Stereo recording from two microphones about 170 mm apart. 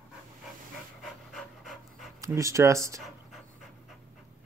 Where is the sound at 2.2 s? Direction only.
20° right (ahead or behind).